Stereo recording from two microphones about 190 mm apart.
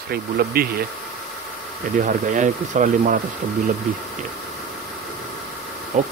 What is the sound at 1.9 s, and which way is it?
Speech, 40° right (ahead or behind).